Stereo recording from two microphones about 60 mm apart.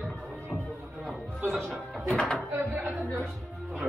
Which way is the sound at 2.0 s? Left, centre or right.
Centre.